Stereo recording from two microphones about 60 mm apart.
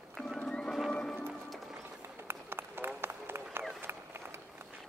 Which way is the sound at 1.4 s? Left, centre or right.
Centre.